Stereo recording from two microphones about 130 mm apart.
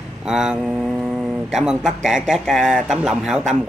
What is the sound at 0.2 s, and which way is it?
Speech, 5° right (ahead or behind).